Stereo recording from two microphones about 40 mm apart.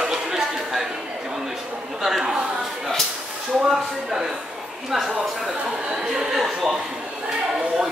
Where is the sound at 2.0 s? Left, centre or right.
Centre.